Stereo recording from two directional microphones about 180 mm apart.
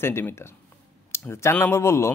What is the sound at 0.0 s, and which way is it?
A man's voice, 15° left (ahead or behind).